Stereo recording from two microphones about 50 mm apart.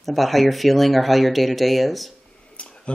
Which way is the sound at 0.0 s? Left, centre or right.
Centre.